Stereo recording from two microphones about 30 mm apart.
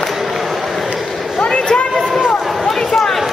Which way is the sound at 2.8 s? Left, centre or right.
Centre.